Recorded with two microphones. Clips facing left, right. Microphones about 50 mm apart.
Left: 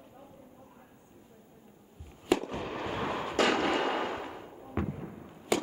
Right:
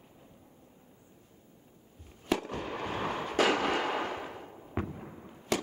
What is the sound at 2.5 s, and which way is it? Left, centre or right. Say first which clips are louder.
Fireworks: even; centre.